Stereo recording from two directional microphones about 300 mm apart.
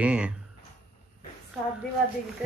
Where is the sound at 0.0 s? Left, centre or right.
Centre.